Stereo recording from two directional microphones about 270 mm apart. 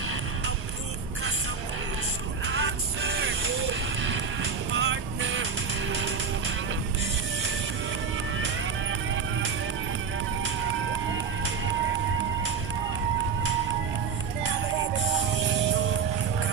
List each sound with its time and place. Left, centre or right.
2.4 s music: right